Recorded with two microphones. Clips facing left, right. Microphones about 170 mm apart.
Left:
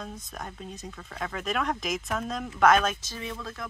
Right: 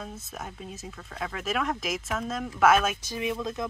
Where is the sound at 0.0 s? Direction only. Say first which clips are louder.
Even; 5° right (ahead or behind).